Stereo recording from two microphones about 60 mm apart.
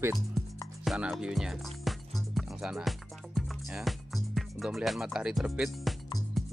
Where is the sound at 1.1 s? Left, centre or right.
Centre.